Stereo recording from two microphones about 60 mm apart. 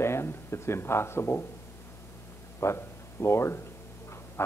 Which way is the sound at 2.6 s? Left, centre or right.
Left.